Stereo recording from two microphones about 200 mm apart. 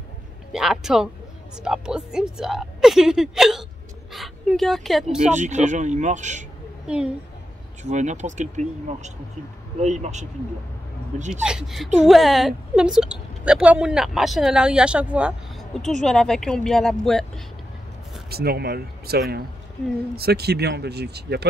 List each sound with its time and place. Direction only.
0.5 s a woman's voice: centre (ahead or behind)
5.3 s speech: 35° right (ahead or behind)
7.8 s speech: 35° right (ahead or behind)
11.4 s a woman's voice: 5° right (ahead or behind)
18.3 s speech: 50° right (ahead or behind)